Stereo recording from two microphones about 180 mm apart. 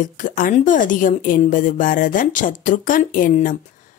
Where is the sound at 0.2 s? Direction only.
50° left (ahead or behind).